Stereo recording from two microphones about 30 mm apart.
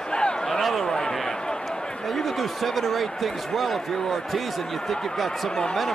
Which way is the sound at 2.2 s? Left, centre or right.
Centre.